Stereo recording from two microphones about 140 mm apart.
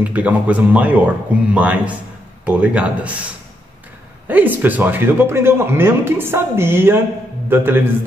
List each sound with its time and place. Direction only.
0.0 s a man's voice: 10° right (ahead or behind)
4.3 s a man's voice: 15° right (ahead or behind)